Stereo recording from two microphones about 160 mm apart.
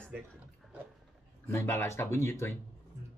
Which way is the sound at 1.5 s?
15° left (ahead or behind).